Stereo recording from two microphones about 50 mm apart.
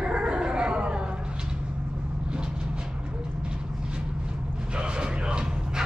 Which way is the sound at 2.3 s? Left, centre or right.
Centre.